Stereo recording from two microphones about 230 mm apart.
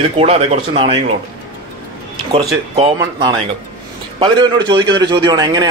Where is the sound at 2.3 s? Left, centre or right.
Right.